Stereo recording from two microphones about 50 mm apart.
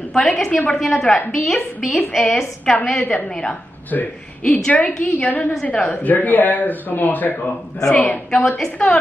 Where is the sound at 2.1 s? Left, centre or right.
Centre.